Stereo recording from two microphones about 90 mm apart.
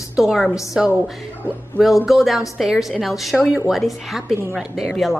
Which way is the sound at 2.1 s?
5° right (ahead or behind).